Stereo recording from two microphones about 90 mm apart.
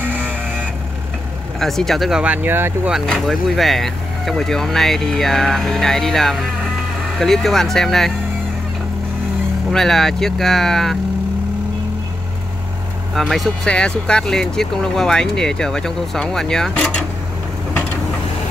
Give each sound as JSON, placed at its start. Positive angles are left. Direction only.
{"t": 0.0, "sound": "a sound", "side_deg": -20}
{"t": 1.6, "sound": "speech", "side_deg": 5}
{"t": 3.1, "sound": "speech", "side_deg": 0}
{"t": 9.7, "sound": "speech", "side_deg": 5}
{"t": 13.1, "sound": "speech", "side_deg": 0}
{"t": 13.7, "sound": "speech", "side_deg": 10}